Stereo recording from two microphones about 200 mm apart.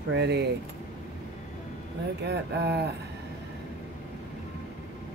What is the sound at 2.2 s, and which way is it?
Speech, 55° right (ahead or behind).